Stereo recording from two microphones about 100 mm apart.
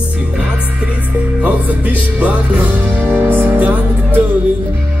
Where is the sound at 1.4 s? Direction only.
15° right (ahead or behind).